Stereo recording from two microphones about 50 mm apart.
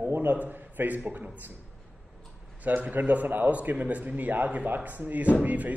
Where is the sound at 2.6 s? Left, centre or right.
Right.